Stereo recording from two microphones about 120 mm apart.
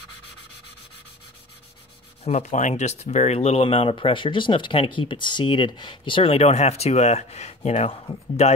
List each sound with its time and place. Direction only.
2.2 s speech: 80° left; by 3.6 s 60° left (ahead or behind)
3.6 s speech: 50° left (ahead or behind); by 7.9 s 65° left (ahead or behind)